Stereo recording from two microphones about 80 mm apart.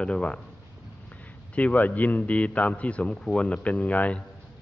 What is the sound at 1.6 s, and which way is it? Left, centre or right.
Speech, centre.